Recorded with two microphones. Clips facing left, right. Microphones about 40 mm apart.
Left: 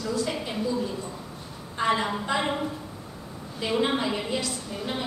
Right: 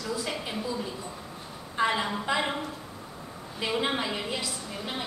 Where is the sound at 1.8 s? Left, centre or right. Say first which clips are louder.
Left 2 dB; centre.